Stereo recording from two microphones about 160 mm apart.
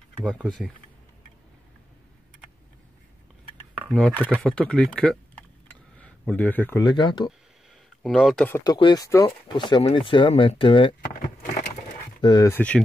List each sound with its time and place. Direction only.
0.2 s speech: 5° right (ahead or behind)
3.9 s speech: 5° left (ahead or behind)
5.9 s a sound: 10° left (ahead or behind)
6.8 s speech: 30° left (ahead or behind)
8.0 s speech: centre (ahead or behind)
8.5 s speech: 15° left (ahead or behind)
8.7 s speech: 25° left (ahead or behind)
12.2 s speech: 30° left (ahead or behind)
12.4 s speech: 10° left (ahead or behind)